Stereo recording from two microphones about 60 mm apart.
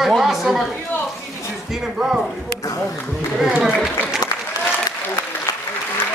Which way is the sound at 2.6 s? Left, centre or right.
Left.